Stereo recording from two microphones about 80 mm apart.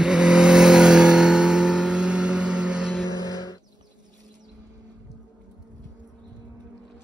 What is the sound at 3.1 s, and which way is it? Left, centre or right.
Vehicle, right.